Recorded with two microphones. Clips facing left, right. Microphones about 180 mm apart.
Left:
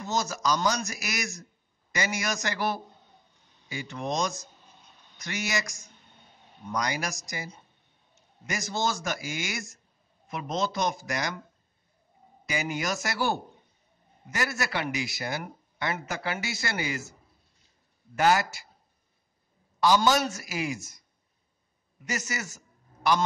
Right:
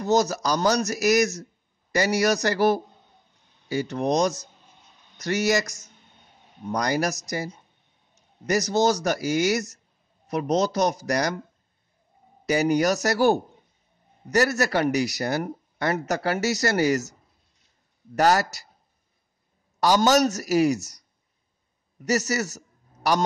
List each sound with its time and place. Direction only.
0.0 s speech: 40° right (ahead or behind)
12.4 s speech: 40° right (ahead or behind)
18.1 s speech: 40° right (ahead or behind)
19.8 s speech: 40° right (ahead or behind)